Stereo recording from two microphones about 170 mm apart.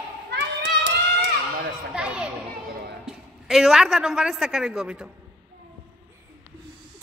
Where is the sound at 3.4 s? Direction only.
Centre (ahead or behind).